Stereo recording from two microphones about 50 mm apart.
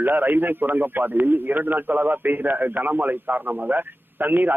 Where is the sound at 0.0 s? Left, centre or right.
Right.